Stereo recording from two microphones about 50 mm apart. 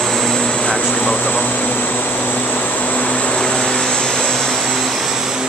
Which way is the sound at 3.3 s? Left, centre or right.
Centre.